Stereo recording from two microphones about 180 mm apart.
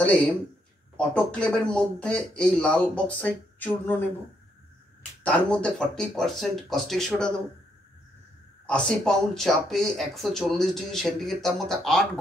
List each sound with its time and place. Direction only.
0.9 s a man's voice: 5° left (ahead or behind)
5.2 s speech: 5° left (ahead or behind)
8.6 s speech: 5° left (ahead or behind)